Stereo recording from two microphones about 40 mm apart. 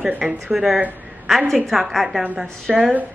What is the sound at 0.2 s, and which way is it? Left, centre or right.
A woman's voice, centre.